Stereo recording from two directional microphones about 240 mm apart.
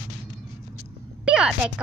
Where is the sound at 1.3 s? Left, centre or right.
Centre.